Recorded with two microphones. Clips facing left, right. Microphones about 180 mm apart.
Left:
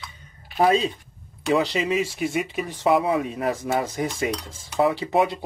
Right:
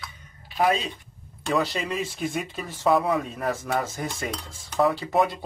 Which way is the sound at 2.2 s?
5° left (ahead or behind).